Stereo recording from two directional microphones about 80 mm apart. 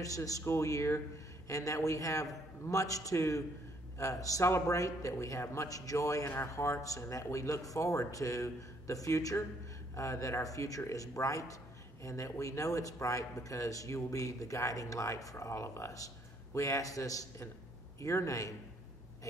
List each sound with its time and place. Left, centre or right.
0.0 s a man's voice: left